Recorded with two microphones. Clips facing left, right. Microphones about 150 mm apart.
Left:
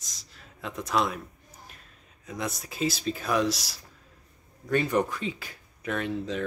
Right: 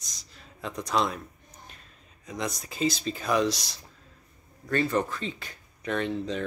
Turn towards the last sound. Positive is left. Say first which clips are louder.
# right 1 dB
turn(degrees=5)  # may be behind; listen again after turning